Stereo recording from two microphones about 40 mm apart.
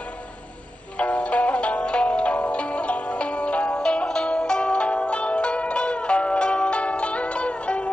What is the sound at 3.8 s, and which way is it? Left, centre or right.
Zither, centre.